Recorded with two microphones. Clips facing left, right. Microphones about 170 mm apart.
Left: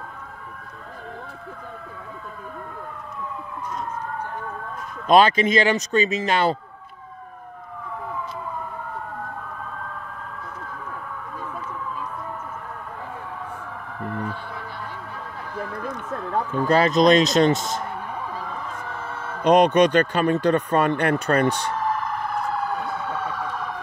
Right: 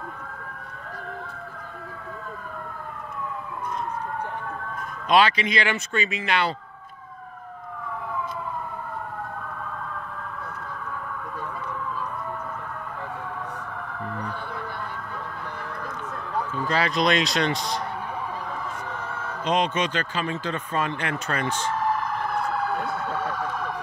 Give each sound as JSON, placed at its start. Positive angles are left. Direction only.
{"t": 5.0, "sound": "speech", "side_deg": 45}
{"t": 16.5, "sound": "speech", "side_deg": 50}
{"t": 19.4, "sound": "speech", "side_deg": 65}